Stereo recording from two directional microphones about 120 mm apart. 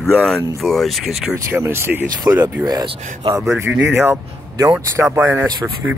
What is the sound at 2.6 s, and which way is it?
Speech, 35° right (ahead or behind).